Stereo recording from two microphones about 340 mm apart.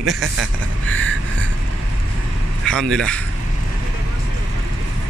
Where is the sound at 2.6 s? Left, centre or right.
Centre.